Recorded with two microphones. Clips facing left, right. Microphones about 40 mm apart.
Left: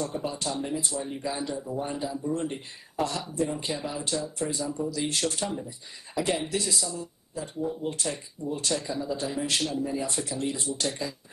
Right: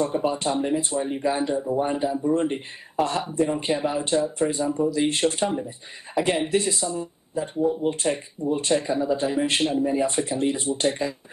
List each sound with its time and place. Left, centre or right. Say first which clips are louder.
0.0 s speech: right 8 dB; right